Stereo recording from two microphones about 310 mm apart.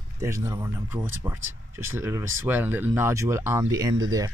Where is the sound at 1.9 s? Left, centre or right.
Centre.